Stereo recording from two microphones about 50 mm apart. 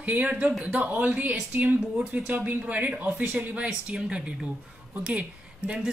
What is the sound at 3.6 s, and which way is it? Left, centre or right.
Speech, centre.